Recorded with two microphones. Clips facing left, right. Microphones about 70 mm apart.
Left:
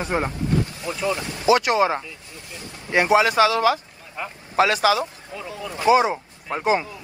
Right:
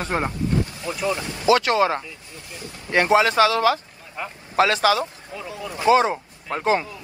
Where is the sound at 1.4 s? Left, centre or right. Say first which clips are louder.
Even; left.